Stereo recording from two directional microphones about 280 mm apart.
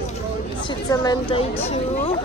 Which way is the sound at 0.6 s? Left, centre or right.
Centre.